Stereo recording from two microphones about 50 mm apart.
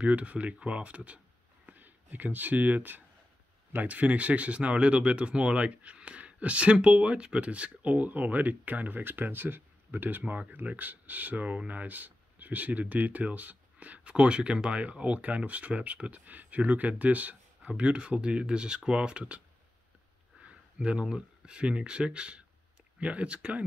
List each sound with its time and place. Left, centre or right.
0.0 s speech: right
20.4 s speech: right